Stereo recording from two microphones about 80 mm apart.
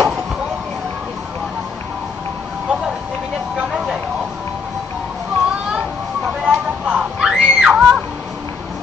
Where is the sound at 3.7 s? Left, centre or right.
Centre.